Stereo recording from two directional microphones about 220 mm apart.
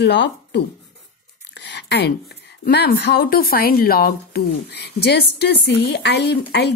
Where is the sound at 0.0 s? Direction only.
50° left (ahead or behind).